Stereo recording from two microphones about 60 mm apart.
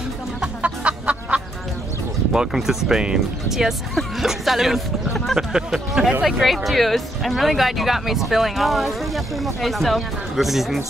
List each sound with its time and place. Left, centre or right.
0.6 s chicken: right
2.3 s speech: centre